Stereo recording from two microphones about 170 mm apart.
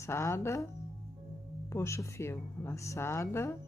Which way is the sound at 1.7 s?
15° left (ahead or behind).